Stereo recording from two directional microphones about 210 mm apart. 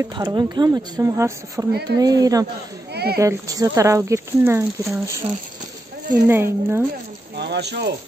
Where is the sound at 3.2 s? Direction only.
15° right (ahead or behind).